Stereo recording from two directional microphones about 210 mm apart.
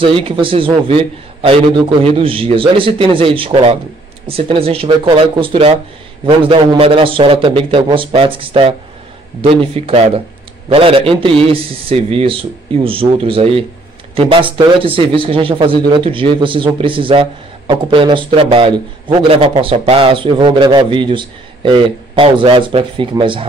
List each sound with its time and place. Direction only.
0.0 s speech: 25° right (ahead or behind)
2.0 s speech: 25° right (ahead or behind)